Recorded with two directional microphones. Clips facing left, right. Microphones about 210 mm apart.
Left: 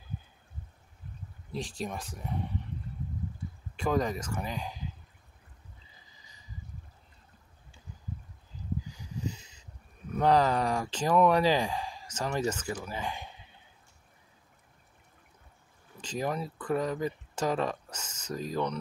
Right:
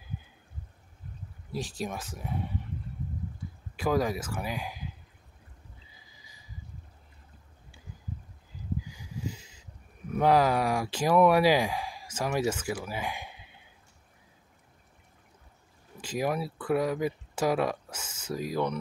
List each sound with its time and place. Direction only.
1.5 s speech: 5° right (ahead or behind)
3.7 s speech: 5° right (ahead or behind)
5.9 s a sound: 10° right (ahead or behind)
8.9 s a sound: 10° right (ahead or behind)
10.1 s speech: 10° right (ahead or behind)
16.0 s speech: 10° right (ahead or behind)